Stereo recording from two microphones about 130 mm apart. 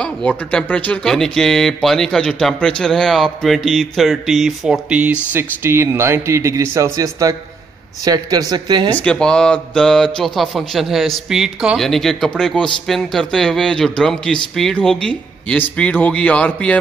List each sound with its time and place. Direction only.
0.0 s speech: 10° left (ahead or behind); by 8.9 s 30° right (ahead or behind)
8.9 s speech: 10° left (ahead or behind)